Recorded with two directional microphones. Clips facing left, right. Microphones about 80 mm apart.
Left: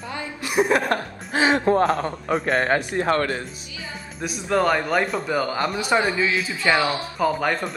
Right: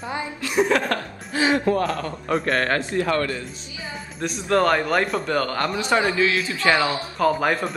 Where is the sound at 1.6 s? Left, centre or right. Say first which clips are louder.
Left 3 dB; left.